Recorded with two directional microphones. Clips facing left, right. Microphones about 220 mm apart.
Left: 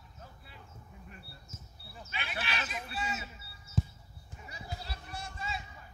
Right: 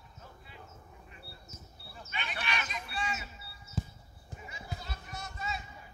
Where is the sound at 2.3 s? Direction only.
5° left (ahead or behind).